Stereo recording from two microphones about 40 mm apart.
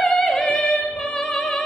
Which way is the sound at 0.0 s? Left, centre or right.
Centre.